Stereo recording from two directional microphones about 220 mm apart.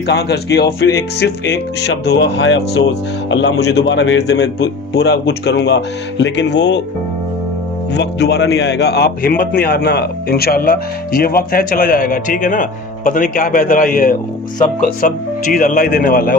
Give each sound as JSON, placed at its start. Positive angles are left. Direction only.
{"t": 0.0, "sound": "speech", "side_deg": 50}
{"t": 7.9, "sound": "speech", "side_deg": 50}